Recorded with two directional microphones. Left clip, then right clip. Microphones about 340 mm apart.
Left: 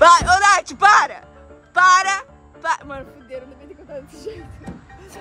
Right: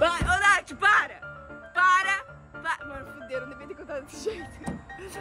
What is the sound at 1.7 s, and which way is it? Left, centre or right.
Music, centre.